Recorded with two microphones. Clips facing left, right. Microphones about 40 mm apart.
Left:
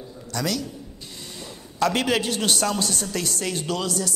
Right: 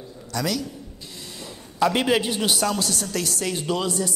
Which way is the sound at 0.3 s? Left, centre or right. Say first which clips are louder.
Right 1 dB; centre.